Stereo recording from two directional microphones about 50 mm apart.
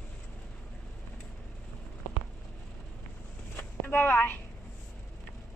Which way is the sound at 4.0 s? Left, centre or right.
Left.